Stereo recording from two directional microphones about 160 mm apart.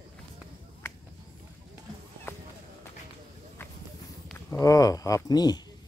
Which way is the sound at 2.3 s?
15° left (ahead or behind).